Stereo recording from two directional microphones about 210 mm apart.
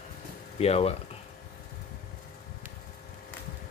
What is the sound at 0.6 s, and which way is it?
Speech, 30° left (ahead or behind).